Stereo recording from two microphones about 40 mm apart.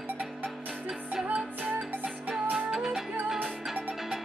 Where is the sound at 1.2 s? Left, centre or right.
Right.